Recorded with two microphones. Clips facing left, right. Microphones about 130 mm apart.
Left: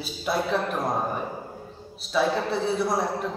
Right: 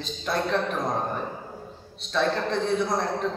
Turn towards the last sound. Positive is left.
turn(degrees=5)  # may be behind; listen again after turning